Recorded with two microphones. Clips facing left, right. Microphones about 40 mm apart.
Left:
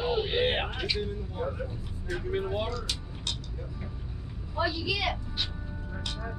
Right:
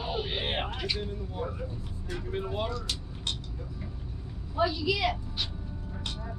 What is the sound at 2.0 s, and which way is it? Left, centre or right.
Speech, centre.